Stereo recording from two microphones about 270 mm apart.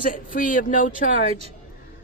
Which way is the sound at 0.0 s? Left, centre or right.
Left.